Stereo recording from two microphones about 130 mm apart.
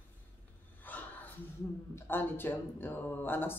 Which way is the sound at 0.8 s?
15° left (ahead or behind).